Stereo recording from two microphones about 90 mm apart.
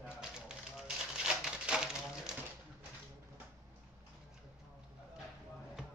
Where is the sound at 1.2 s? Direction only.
10° right (ahead or behind).